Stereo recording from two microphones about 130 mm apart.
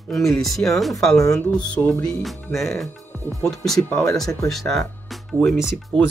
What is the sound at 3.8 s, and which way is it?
Speech, 20° left (ahead or behind).